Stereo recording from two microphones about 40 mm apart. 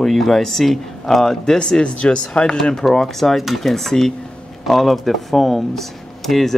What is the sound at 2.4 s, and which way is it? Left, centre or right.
Speech, centre.